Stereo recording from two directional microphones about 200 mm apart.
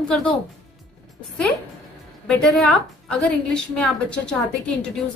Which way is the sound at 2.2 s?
5° left (ahead or behind).